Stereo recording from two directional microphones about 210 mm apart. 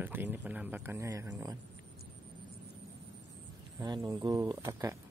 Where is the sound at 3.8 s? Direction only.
15° right (ahead or behind).